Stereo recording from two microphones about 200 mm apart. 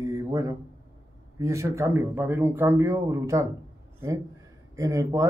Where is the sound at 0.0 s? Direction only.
15° right (ahead or behind).